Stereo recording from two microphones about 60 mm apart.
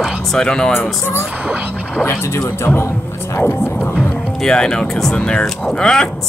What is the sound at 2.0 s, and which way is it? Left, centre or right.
Speech, left.